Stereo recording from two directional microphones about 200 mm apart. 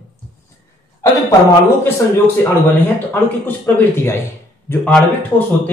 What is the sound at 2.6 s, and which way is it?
Speech, 10° left (ahead or behind).